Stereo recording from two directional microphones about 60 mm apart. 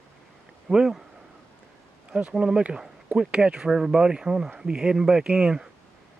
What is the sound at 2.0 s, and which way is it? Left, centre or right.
Insect, centre.